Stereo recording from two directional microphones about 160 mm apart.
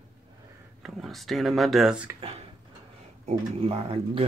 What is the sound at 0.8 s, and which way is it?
Speech, centre (ahead or behind).